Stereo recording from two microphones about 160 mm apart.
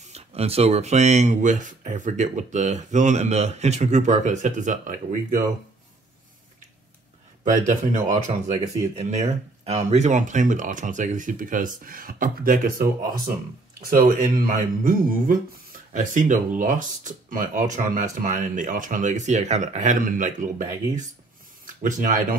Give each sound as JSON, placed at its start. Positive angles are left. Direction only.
{"t": 0.1, "sound": "speech", "side_deg": -40}
{"t": 7.4, "sound": "speech", "side_deg": -50}